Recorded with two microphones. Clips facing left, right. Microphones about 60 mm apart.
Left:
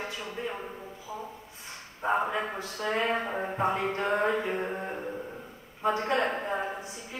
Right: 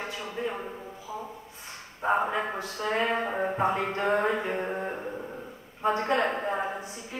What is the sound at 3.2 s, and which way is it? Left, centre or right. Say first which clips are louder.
Music: right 3 dB; centre.